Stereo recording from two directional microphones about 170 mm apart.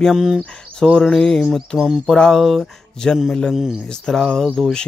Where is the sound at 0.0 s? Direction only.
5° right (ahead or behind).